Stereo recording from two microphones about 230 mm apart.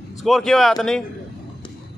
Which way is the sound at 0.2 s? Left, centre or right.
Centre.